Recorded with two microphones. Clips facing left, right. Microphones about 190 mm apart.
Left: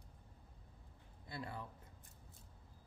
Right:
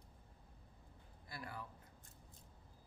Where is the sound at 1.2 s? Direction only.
25° left (ahead or behind).